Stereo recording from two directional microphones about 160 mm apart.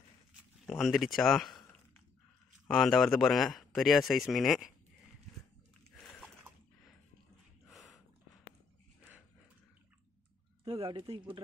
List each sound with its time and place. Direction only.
0.7 s speech: centre (ahead or behind)
2.7 s speech: centre (ahead or behind)
10.6 s speech: 25° right (ahead or behind)